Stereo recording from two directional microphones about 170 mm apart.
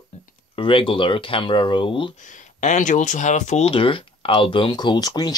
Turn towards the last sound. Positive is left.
turn(degrees=25)  # may be behind; listen again after turning